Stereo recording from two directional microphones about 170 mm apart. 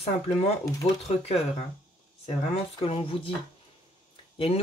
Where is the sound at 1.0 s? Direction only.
35° left (ahead or behind).